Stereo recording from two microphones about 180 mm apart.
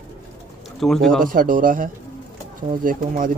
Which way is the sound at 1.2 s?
50° right (ahead or behind).